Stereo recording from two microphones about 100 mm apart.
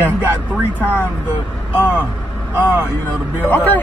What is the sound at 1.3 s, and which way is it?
Speech, 20° right (ahead or behind).